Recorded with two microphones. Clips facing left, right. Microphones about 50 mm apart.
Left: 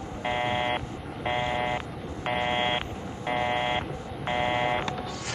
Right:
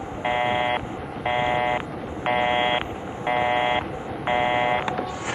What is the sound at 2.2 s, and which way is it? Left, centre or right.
Buzzer, right.